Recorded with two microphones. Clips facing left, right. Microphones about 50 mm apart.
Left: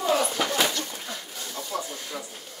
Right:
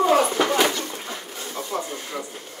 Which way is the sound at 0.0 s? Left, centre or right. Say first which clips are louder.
Right 6 dB; right.